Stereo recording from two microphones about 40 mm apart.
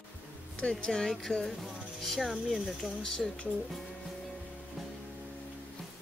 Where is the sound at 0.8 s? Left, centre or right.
Centre.